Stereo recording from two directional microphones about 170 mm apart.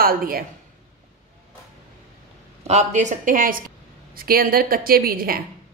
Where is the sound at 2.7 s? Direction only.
45° right (ahead or behind); by 5.4 s 60° right (ahead or behind).